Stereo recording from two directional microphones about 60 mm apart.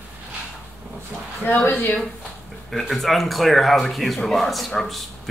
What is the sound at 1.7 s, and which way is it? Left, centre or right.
Speech, left.